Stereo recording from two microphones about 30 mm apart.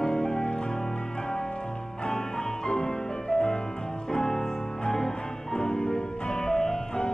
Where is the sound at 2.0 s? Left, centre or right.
Left.